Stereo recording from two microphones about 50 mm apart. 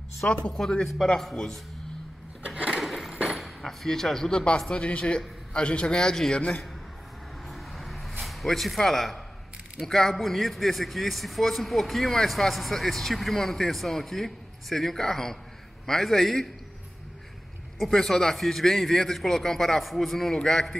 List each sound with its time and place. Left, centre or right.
0.2 s a man's voice: left
2.4 s a sound: centre
2.8 s a sound: centre
3.3 s speech: centre
4.7 s a man's voice: left
7.4 s vehicle: centre
8.2 s a man's voice: centre
17.7 s a man's voice: centre